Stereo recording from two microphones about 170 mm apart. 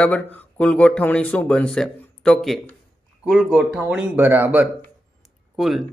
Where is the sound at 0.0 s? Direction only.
10° left (ahead or behind).